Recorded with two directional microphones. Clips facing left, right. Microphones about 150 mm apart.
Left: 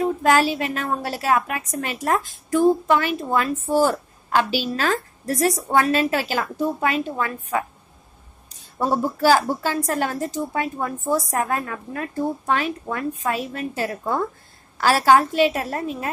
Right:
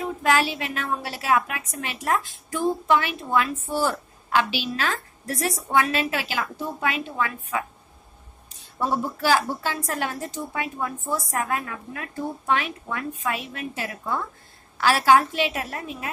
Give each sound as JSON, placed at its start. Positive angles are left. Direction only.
{"t": 0.0, "sound": "a woman's voice", "side_deg": 40}